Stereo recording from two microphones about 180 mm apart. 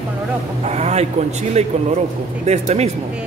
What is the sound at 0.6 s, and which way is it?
A man's voice, 35° right (ahead or behind).